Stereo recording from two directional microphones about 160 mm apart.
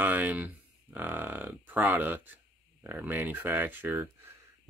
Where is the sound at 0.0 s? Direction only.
10° right (ahead or behind).